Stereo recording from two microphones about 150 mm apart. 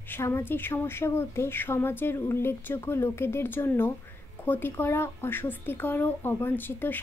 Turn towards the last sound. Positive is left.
turn(degrees=15)  # may be behind; listen again after turning